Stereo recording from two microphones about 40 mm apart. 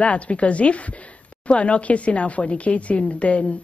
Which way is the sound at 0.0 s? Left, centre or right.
Left.